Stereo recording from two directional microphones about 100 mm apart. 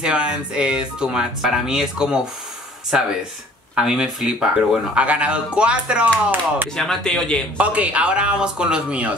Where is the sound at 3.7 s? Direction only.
5° right (ahead or behind).